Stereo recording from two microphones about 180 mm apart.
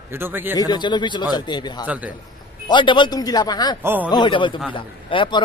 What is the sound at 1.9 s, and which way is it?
Speech, 10° right (ahead or behind).